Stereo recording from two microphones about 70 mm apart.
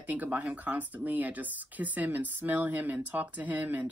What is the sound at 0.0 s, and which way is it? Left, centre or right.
Speech, right.